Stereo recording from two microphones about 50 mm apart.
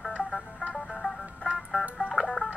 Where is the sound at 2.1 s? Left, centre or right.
Centre.